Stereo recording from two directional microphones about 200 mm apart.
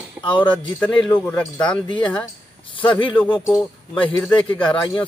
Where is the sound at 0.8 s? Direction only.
5° left (ahead or behind).